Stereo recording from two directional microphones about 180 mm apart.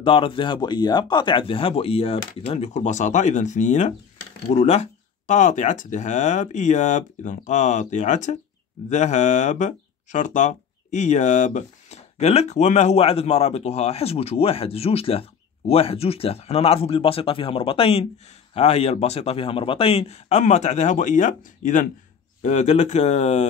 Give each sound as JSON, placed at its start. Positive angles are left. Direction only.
{"t": 0.0, "sound": "speech", "side_deg": 30}